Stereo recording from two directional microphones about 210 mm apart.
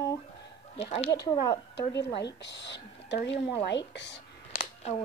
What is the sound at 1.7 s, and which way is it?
A woman's voice, 55° left (ahead or behind).